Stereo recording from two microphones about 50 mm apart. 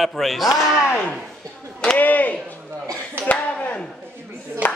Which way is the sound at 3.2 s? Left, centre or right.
Left.